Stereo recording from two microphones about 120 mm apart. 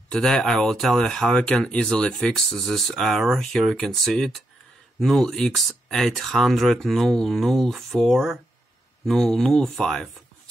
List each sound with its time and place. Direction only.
0.1 s speech: 5° left (ahead or behind)